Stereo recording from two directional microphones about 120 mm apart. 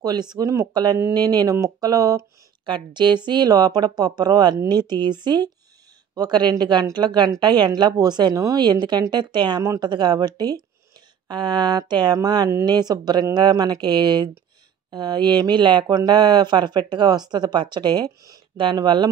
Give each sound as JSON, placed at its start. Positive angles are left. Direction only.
{"t": 0.0, "sound": "speech", "side_deg": -35}